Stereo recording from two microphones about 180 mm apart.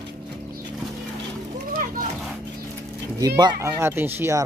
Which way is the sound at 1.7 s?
50° right (ahead or behind).